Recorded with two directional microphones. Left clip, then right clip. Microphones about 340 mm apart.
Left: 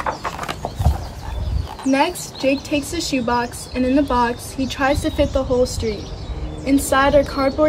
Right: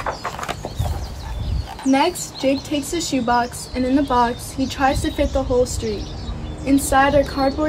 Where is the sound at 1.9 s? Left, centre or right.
Centre.